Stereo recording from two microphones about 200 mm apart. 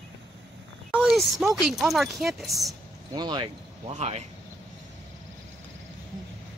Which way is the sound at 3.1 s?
20° right (ahead or behind).